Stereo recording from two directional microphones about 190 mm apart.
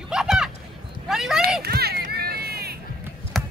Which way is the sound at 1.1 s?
Centre (ahead or behind).